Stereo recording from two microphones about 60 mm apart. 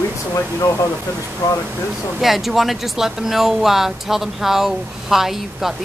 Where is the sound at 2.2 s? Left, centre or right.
Centre.